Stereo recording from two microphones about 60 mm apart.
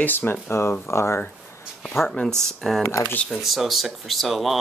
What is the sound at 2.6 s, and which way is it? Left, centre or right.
Speech, centre.